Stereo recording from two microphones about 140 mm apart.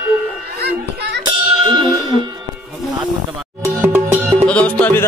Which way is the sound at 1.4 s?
35° right (ahead or behind).